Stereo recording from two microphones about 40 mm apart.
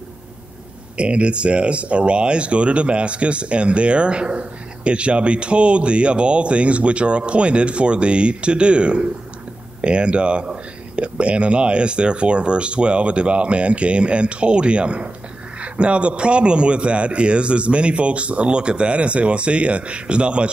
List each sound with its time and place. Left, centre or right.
0.9 s speech: right